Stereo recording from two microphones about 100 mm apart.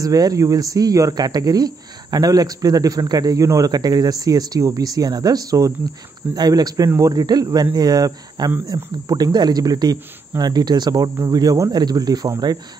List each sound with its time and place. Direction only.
0.0 s speech: 35° right (ahead or behind)